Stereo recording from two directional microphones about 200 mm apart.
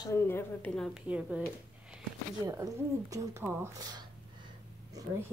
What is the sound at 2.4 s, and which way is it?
A woman's voice, 15° right (ahead or behind).